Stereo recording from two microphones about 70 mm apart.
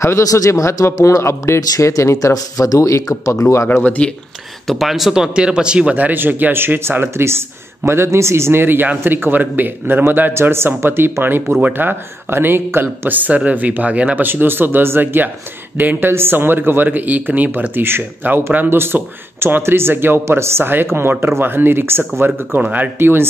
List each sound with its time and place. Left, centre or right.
0.2 s speech: left
3.6 s speech: left
4.6 s speech: centre; by 10.3 s right
10.3 s a man's voice: right; by 14.2 s centre
14.2 s a man's voice: right